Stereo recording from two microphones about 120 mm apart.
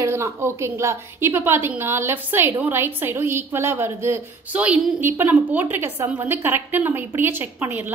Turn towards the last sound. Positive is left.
turn(degrees=-15)  # may be behind; listen again after turning